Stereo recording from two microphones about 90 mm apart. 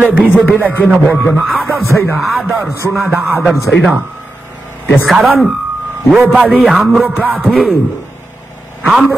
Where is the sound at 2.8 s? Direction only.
25° right (ahead or behind).